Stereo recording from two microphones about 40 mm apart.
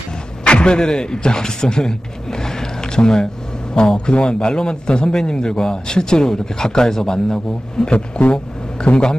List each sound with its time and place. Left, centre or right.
0.4 s a man's voice: left
8.2 s a man's voice: left